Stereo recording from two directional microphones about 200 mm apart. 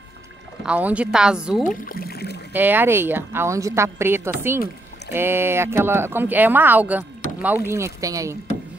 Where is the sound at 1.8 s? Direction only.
50° left (ahead or behind).